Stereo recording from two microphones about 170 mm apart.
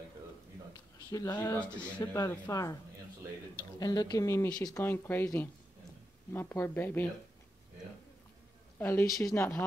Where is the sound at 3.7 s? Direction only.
25° left (ahead or behind).